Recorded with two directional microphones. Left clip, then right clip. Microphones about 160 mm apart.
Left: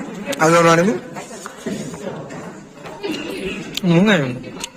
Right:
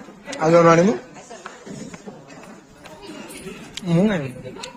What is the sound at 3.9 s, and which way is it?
Speech, 10° right (ahead or behind).